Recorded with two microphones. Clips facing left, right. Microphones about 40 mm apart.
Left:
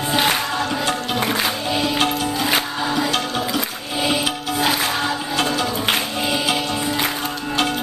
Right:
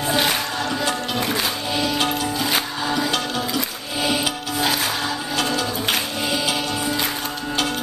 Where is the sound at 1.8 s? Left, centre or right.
Left.